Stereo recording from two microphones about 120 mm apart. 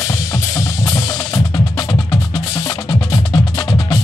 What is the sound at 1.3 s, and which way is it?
Wood block, 35° left (ahead or behind).